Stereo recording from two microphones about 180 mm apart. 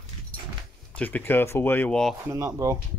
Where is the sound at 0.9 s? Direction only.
10° left (ahead or behind).